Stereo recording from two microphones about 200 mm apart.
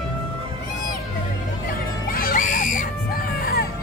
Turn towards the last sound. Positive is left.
turn(degrees=50)  # may be behind; listen again after turning